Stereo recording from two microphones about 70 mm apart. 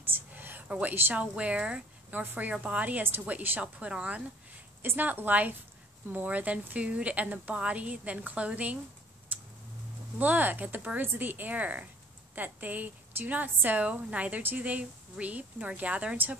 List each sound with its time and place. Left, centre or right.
0.0 s a sound: right
0.7 s a woman's voice: right
1.2 s a woman's voice: centre
10.1 s a woman's voice: right